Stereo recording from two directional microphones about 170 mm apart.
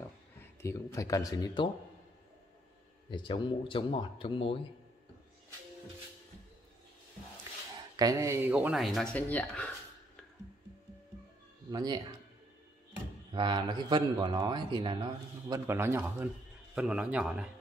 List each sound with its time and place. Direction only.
0.4 s speech: 15° left (ahead or behind)
3.1 s speech: 30° left (ahead or behind)
7.9 s speech: 20° right (ahead or behind); by 9.7 s 10° left (ahead or behind)
11.7 s speech: 25° right (ahead or behind)
13.3 s speech: 25° right (ahead or behind)
15.4 s a man's voice: 15° right (ahead or behind)